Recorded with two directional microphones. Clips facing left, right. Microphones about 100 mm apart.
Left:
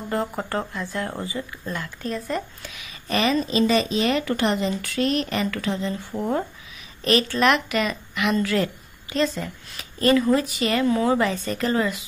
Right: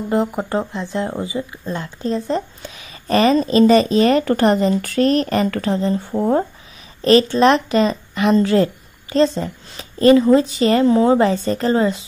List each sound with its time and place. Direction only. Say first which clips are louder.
0.1 s a woman's voice: right 6 dB; 20° right (ahead or behind)